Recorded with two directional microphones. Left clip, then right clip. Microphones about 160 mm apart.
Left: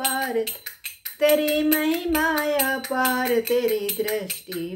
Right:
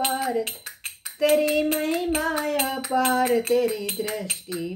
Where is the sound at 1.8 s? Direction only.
25° left (ahead or behind).